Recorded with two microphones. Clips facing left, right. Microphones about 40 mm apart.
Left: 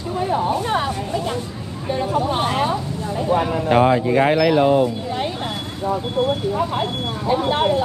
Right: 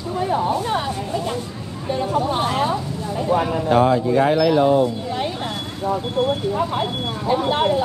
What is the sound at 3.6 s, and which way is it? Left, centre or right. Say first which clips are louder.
Speech: left 1 dB; left.